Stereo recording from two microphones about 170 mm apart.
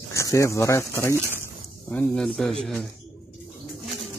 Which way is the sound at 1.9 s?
5° left (ahead or behind).